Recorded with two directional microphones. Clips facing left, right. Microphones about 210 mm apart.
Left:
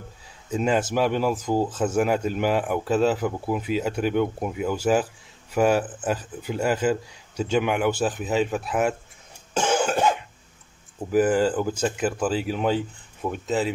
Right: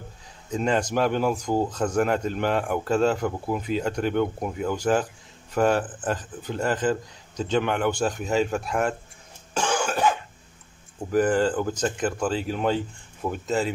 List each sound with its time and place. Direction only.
0.5 s a man's voice: 5° left (ahead or behind)
9.5 s cough: 20° left (ahead or behind)
11.0 s speech: 5° left (ahead or behind)